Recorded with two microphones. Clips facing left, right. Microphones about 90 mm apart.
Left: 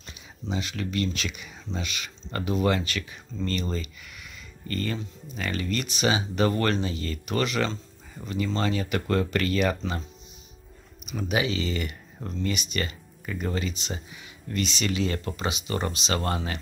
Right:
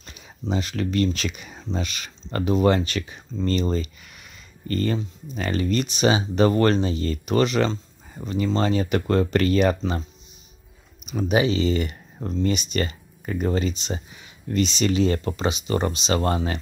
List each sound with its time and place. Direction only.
0.5 s speech: 40° right (ahead or behind)
8.2 s speech: 10° right (ahead or behind)
8.5 s speech: 30° right (ahead or behind)
11.1 s speech: 30° right (ahead or behind)